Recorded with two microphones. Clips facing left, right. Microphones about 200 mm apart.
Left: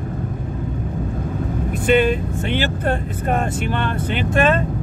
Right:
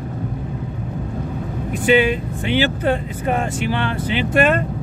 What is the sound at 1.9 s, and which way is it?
Speech, 5° right (ahead or behind).